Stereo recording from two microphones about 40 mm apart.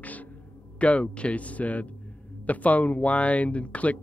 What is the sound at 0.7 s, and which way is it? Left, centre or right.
Speech, left.